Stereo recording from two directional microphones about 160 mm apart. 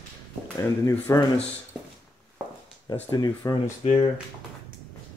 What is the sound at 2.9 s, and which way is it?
Speech, 25° left (ahead or behind).